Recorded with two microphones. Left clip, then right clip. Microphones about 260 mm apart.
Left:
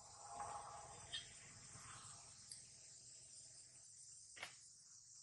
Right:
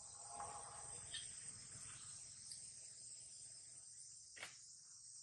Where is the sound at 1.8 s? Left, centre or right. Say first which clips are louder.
Left 3 dB; left.